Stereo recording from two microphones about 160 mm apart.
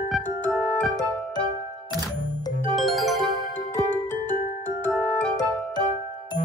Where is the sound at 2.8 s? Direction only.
Centre (ahead or behind).